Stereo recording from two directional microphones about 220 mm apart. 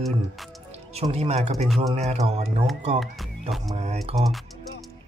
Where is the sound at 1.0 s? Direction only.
25° right (ahead or behind).